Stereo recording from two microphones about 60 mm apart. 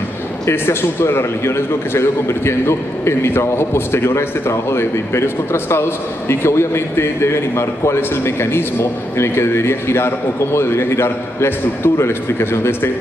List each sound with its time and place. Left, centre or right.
0.5 s a man's voice: left